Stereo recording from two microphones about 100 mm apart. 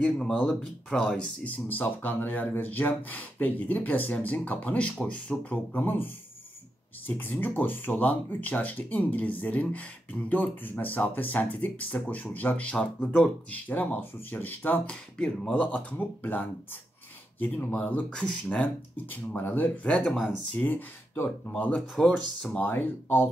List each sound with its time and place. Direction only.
0.0 s speech: 5° left (ahead or behind)
7.1 s speech: 20° left (ahead or behind)
20.1 s speech: centre (ahead or behind)
20.5 s speech: 20° left (ahead or behind)
22.7 s speech: 20° left (ahead or behind)